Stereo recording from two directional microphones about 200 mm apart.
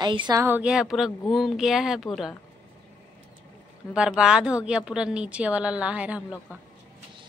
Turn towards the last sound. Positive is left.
turn(degrees=-5)  # may be behind; listen again after turning